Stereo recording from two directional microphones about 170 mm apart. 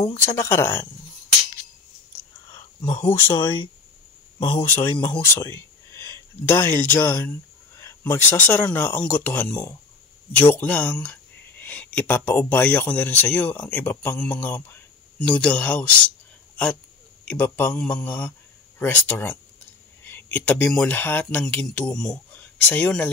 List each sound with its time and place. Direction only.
0.1 s speech: 15° left (ahead or behind)
3.1 s speech: 15° left (ahead or behind)
3.3 s speech: 30° left (ahead or behind)
4.6 s speech: 10° left (ahead or behind)
11.6 s a sound: 10° left (ahead or behind)
12.3 s speech: 10° left (ahead or behind)
17.2 s speech: 10° left (ahead or behind)